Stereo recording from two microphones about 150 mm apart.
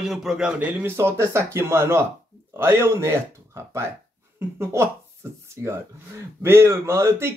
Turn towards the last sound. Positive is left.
turn(degrees=-15)  # may be behind; listen again after turning